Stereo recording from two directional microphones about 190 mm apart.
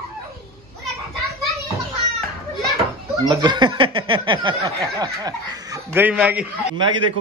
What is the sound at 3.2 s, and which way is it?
Speech, 20° right (ahead or behind).